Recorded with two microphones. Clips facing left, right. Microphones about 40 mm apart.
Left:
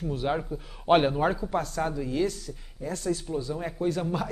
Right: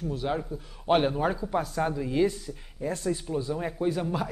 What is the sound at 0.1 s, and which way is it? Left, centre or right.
A man's voice, centre.